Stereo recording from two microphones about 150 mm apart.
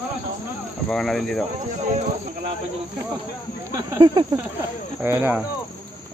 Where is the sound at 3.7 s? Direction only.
25° right (ahead or behind).